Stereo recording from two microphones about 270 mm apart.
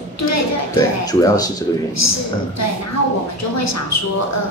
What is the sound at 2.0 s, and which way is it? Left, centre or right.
A woman's voice, left.